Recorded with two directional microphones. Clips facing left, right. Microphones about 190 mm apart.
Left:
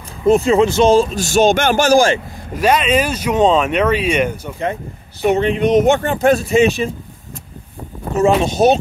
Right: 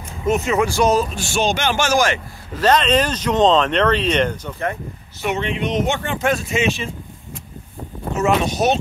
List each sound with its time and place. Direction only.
0.2 s speech: 30° left (ahead or behind)
1.1 s speech: 40° left (ahead or behind)
2.5 s speech: 10° left (ahead or behind)
5.2 s speech: 40° left (ahead or behind)
8.2 s speech: 30° left (ahead or behind)